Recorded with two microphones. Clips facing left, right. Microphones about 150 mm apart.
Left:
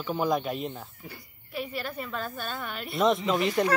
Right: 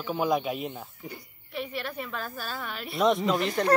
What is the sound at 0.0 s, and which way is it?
A woman's voice, centre (ahead or behind).